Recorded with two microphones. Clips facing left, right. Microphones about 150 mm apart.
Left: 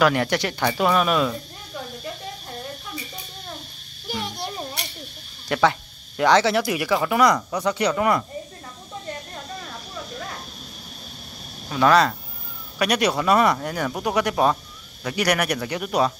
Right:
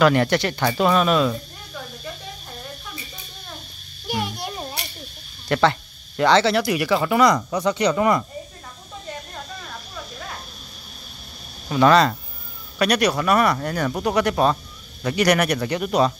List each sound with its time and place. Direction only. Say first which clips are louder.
0.0 s speech: right 3 dB; 5° left (ahead or behind)
4.1 s a sound: right 3 dB; 5° right (ahead or behind)
5.5 s speech: right 1 dB; 5° left (ahead or behind)
11.7 s speech: right 2 dB; centre (ahead or behind)
12.7 s speech: right 2 dB; 15° left (ahead or behind)
13.6 s speech: right 2 dB; 5° left (ahead or behind)